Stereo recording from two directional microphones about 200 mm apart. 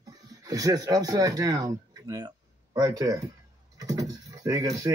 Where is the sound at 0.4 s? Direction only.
20° right (ahead or behind).